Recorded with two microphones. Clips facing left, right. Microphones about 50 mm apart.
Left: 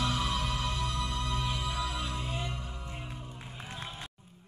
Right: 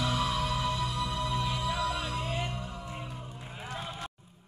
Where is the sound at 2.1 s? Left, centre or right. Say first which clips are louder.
Right 3 dB; right.